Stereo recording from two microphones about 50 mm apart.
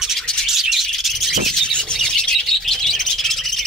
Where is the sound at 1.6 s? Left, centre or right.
Centre.